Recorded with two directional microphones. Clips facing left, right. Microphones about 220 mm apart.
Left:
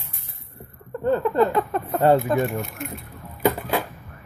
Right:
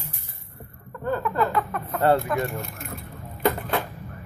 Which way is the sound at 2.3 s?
30° left (ahead or behind).